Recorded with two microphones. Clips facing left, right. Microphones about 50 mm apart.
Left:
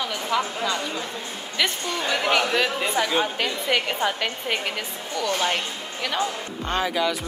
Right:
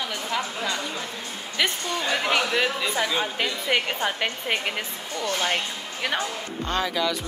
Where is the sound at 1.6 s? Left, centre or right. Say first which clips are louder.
Even; centre.